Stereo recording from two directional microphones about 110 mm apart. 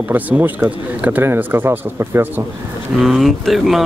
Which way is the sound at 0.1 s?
20° right (ahead or behind).